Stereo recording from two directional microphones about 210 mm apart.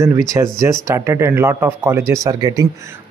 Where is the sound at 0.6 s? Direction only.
15° right (ahead or behind).